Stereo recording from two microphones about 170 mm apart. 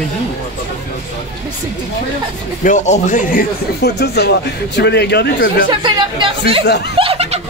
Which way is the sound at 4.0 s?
75° left (ahead or behind).